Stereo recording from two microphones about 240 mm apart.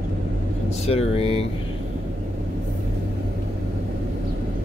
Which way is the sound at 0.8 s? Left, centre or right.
Left.